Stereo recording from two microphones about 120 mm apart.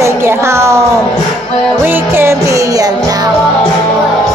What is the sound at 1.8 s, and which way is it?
Music, 20° right (ahead or behind).